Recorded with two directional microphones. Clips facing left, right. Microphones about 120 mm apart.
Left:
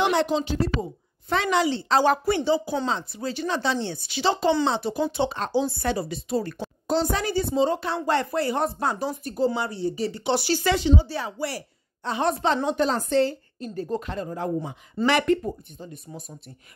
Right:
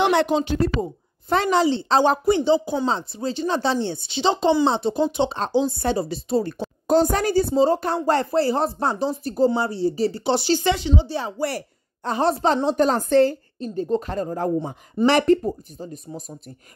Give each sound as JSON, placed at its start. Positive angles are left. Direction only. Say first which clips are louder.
{"t": 0.0, "sound": "speech", "louder": "right 3 dB", "side_deg": -65}
{"t": 1.3, "sound": "speech", "louder": "right 4 dB", "side_deg": -35}
{"t": 6.9, "sound": "a woman's voice", "louder": "right 6 dB", "side_deg": -50}
{"t": 11.3, "sound": "a woman's voice", "louder": "right 5 dB", "side_deg": -50}
{"t": 12.3, "sound": "a woman's voice", "louder": "right 3 dB", "side_deg": -35}
{"t": 12.6, "sound": "a woman's voice", "louder": "right 4 dB", "side_deg": -45}
{"t": 13.6, "sound": "speech", "louder": "right 5 dB", "side_deg": -20}
{"t": 13.9, "sound": "a woman's voice", "louder": "right 6 dB", "side_deg": -40}